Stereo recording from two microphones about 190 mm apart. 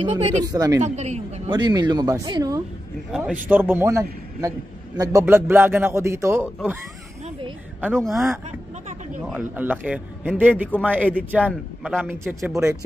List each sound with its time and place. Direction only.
0.0 s speech: 35° right (ahead or behind)
0.5 s a man's voice: 15° right (ahead or behind)
0.8 s speech: 35° right (ahead or behind)
1.5 s speech: 20° right (ahead or behind)
3.1 s a man's voice: 5° right (ahead or behind)
8.1 s a man's voice: 15° right (ahead or behind)